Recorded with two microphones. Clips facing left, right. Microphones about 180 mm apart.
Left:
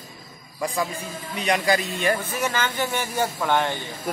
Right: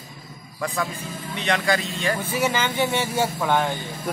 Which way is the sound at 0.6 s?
15° left (ahead or behind).